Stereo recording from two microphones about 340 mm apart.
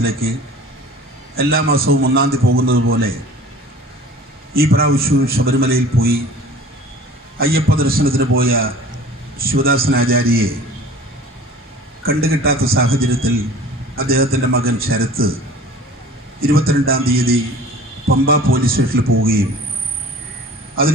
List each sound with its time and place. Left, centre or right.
1.3 s a man's voice: right
4.6 s a man's voice: right
7.3 s a man's voice: right
12.0 s a man's voice: right